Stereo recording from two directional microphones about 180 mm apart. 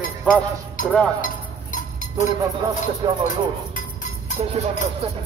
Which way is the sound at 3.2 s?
45° left (ahead or behind).